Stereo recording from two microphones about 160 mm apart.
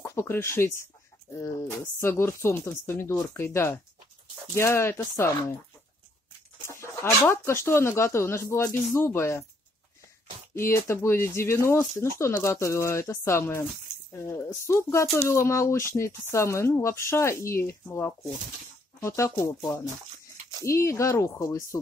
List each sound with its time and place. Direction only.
0.0 s speech: 15° left (ahead or behind)
6.7 s speech: 15° left (ahead or behind)
10.6 s speech: 15° left (ahead or behind)